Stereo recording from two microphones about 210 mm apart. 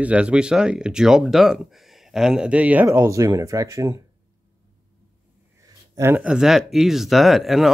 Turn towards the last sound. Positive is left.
turn(degrees=0)  # may be behind; listen again after turning